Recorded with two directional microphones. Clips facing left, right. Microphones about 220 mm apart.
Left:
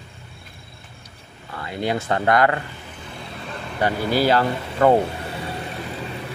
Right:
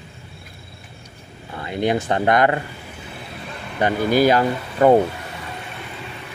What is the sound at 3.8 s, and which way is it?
Speech, 15° right (ahead or behind).